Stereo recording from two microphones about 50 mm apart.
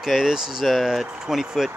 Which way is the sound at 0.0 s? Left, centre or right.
Centre.